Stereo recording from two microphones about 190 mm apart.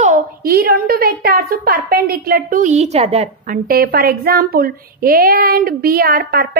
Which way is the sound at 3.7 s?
50° right (ahead or behind).